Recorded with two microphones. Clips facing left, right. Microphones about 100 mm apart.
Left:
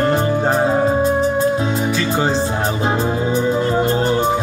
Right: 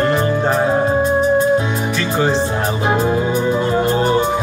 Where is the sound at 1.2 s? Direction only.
30° left (ahead or behind).